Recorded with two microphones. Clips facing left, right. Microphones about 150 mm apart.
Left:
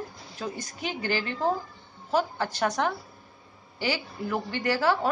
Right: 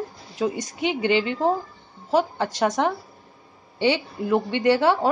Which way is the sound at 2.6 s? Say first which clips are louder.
Right 5 dB; 20° right (ahead or behind).